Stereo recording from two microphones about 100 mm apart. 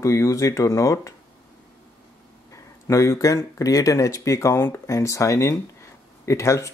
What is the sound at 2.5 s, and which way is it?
Speech, 30° left (ahead or behind).